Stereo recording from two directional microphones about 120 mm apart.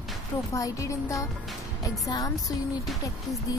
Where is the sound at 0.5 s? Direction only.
25° left (ahead or behind).